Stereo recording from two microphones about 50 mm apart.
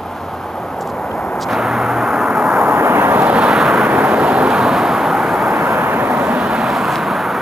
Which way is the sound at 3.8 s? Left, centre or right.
Right.